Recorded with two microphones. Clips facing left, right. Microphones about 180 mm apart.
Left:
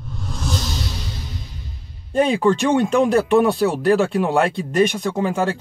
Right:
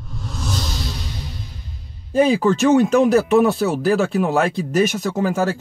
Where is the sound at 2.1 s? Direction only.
5° right (ahead or behind).